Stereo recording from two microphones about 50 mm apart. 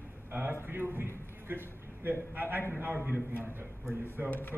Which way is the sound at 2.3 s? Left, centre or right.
Right.